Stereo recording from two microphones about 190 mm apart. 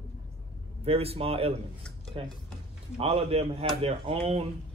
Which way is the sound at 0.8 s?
30° right (ahead or behind).